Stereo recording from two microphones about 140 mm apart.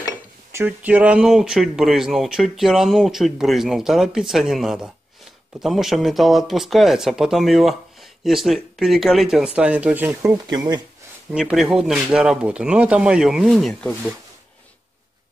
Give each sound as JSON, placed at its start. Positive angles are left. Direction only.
{"t": 0.0, "sound": "speech", "side_deg": -20}
{"t": 10.2, "sound": "speech", "side_deg": -30}
{"t": 11.3, "sound": "speech", "side_deg": -5}